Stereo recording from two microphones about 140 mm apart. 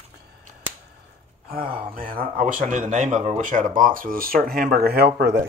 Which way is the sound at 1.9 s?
90° right.